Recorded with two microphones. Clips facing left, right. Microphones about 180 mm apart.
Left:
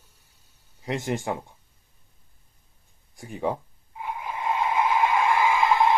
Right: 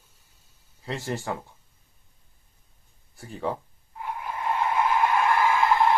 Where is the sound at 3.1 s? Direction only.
15° left (ahead or behind).